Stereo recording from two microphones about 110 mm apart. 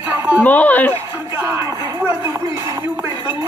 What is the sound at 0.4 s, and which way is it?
Speech, 15° left (ahead or behind).